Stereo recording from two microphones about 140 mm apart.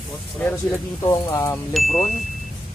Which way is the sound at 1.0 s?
20° left (ahead or behind).